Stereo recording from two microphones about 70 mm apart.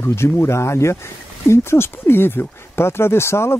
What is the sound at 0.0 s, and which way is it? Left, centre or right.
Speech, left.